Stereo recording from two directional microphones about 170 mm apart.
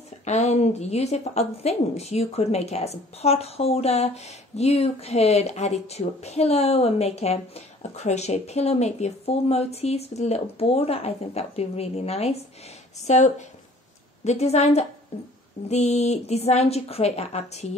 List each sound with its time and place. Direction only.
0.2 s a woman's voice: 40° left (ahead or behind)